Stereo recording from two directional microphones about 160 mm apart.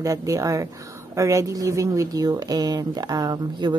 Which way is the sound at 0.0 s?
20° right (ahead or behind).